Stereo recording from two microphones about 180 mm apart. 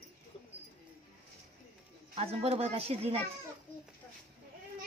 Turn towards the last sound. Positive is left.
turn(degrees=-35)  # may be behind; listen again after turning